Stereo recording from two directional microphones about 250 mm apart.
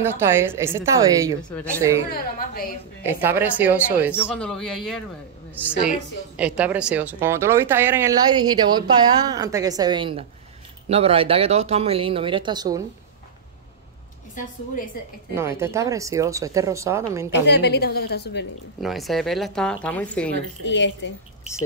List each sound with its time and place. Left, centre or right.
0.0 s speech: centre
2.1 s a woman's voice: left
3.1 s speech: centre
4.1 s speech: centre
15.3 s speech: centre
17.3 s a woman's voice: left
18.8 s speech: centre
20.6 s speech: left